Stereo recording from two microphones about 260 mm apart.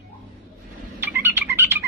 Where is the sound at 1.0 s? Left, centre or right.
Centre.